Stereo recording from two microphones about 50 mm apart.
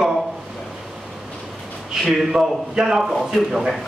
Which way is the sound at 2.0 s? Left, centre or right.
Centre.